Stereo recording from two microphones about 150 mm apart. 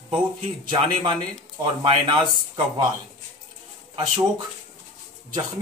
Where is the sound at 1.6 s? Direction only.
35° right (ahead or behind).